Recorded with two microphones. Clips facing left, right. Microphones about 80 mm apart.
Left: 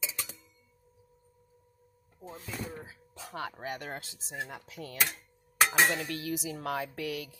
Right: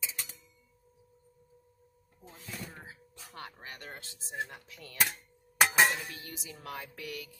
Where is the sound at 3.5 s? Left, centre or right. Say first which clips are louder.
Left 8 dB; left.